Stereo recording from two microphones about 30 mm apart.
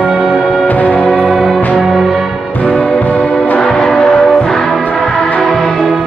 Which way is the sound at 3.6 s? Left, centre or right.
Centre.